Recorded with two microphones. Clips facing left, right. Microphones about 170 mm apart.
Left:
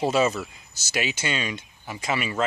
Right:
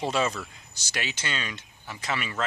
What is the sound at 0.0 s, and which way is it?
Speech, 5° left (ahead or behind).